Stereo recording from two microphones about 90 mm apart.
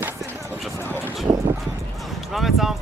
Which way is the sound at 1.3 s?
55° right (ahead or behind).